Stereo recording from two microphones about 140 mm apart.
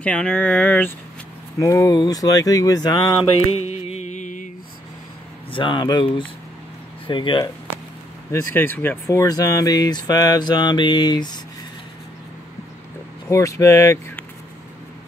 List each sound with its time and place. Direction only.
0.0 s speech: 10° left (ahead or behind)
1.6 s speech: 25° left (ahead or behind)
3.6 s music: 50° left (ahead or behind)
5.5 s speech: 35° left (ahead or behind)
8.3 s speech: 15° left (ahead or behind); by 11.3 s 30° left (ahead or behind)
13.3 s speech: 20° left (ahead or behind)